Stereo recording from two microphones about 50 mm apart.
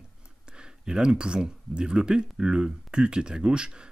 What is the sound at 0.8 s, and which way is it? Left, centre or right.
Speech, centre.